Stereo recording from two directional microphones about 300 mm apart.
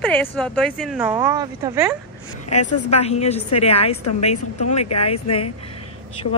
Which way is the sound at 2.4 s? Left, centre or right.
Left.